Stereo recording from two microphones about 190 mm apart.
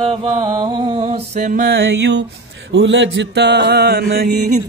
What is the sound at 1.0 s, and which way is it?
Mantra, 35° right (ahead or behind).